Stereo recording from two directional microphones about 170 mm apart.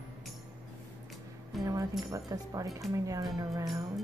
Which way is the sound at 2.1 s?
20° right (ahead or behind).